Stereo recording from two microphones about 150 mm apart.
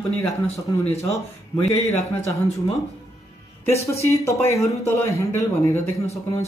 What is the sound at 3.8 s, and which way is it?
Speech, 20° left (ahead or behind).